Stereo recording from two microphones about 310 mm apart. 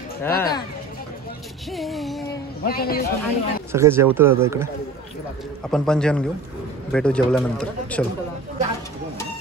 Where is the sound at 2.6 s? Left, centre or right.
Left.